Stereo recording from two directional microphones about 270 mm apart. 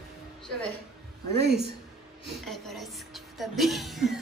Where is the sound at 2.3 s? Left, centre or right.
Centre.